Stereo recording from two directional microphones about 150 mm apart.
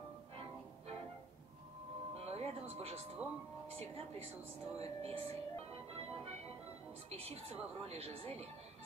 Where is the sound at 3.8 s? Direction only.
45° right (ahead or behind).